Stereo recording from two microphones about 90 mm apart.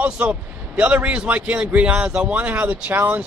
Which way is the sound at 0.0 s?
15° right (ahead or behind).